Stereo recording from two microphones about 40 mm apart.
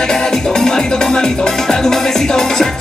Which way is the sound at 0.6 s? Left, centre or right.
Centre.